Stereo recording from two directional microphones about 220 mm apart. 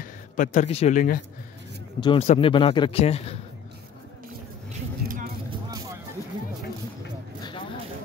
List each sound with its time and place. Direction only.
0.0 s speech: 35° left (ahead or behind)
2.0 s a man's voice: 25° left (ahead or behind)
5.0 s vehicle: 40° right (ahead or behind)
5.5 s music: 15° right (ahead or behind)